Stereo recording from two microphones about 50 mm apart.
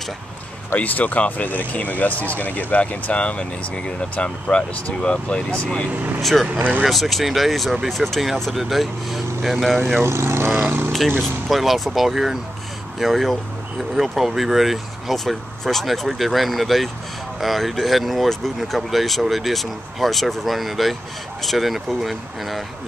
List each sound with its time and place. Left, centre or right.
0.7 s speech: left
6.9 s speech: centre
10.0 s speech: right
10.6 s speech: right
11.1 s speech: centre